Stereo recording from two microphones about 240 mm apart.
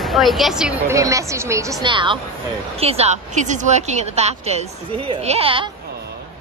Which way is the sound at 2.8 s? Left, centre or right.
Right.